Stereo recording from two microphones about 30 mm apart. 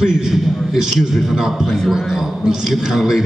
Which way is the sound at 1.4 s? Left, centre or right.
Centre.